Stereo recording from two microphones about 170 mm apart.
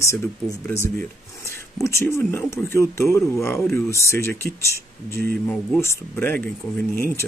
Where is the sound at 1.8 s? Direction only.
15° left (ahead or behind).